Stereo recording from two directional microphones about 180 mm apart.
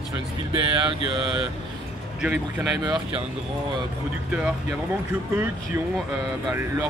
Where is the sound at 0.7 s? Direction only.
30° right (ahead or behind).